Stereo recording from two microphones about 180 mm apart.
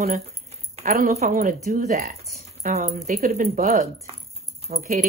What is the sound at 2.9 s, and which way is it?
Speech, 50° right (ahead or behind).